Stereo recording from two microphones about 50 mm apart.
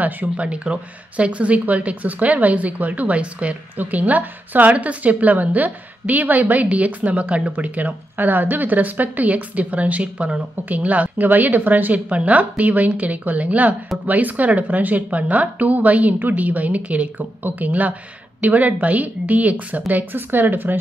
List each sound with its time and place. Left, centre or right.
0.0 s a woman's voice: right